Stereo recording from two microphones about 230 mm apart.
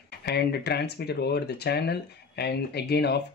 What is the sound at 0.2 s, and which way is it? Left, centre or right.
Speech, left.